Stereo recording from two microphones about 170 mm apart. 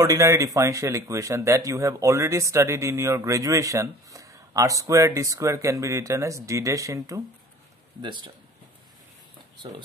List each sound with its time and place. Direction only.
0.0 s speech: 15° right (ahead or behind)